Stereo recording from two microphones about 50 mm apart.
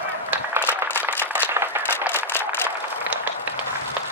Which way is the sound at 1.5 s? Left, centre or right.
Right.